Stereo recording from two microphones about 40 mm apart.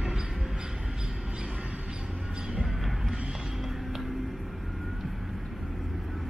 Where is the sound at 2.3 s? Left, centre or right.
Centre.